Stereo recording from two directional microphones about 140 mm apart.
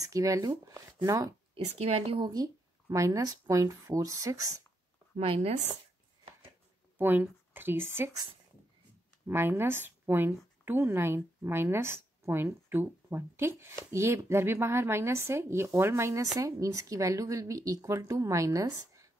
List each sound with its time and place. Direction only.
0.0 s speech: 25° right (ahead or behind)
1.5 s speech: 45° right (ahead or behind)
2.1 s speech: 30° right (ahead or behind)
5.1 s speech: 45° right (ahead or behind)
7.0 s a woman's voice: 15° right (ahead or behind)
9.3 s a woman's voice: 15° right (ahead or behind)